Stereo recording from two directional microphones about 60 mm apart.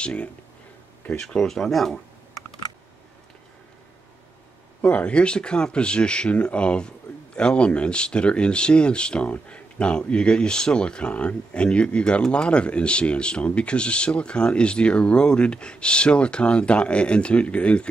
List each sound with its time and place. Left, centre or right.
0.0 s speech: centre
4.8 s speech: centre